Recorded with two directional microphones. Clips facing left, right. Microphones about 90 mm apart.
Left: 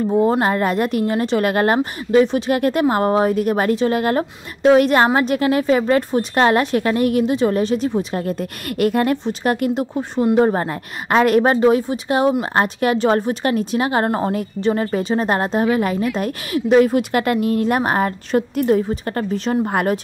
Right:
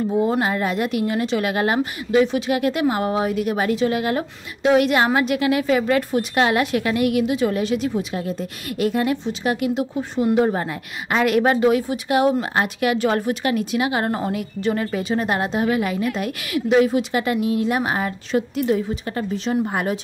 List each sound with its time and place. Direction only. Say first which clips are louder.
0.1 s a woman's voice: left 5 dB; 35° left (ahead or behind)
8.1 s a woman's voice: left 3 dB; 55° left (ahead or behind)